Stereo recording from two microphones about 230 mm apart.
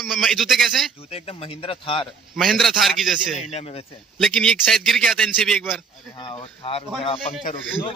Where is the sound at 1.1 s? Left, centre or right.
Left.